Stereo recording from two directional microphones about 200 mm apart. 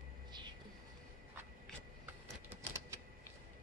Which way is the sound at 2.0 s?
10° right (ahead or behind).